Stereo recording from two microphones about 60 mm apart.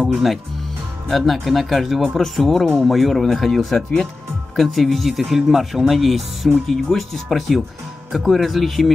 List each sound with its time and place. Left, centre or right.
0.1 s speech: centre